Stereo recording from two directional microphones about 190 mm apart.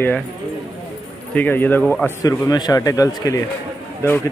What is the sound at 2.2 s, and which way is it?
Speech, 20° left (ahead or behind).